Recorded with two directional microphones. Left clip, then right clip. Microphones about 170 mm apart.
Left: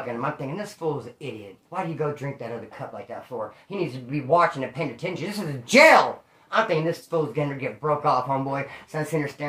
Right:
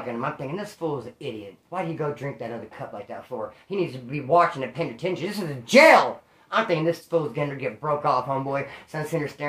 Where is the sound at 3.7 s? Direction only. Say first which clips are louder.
Right 2 dB; 5° right (ahead or behind).